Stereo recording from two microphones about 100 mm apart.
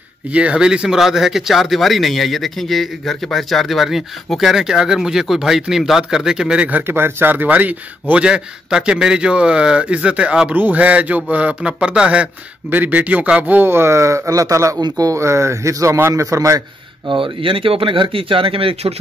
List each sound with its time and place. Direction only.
0.3 s a man's voice: 10° right (ahead or behind); by 14.8 s 30° right (ahead or behind)
14.8 s speech: 45° right (ahead or behind)
17.1 s speech: 60° right (ahead or behind); by 18.9 s 80° right